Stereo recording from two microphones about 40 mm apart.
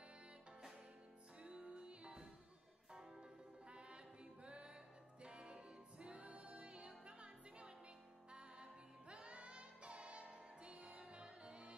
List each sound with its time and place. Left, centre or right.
1.4 s music: right